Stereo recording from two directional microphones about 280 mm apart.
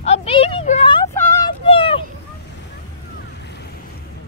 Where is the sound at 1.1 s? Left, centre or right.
Centre.